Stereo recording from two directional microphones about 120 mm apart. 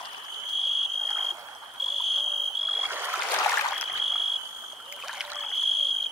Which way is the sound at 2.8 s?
15° right (ahead or behind).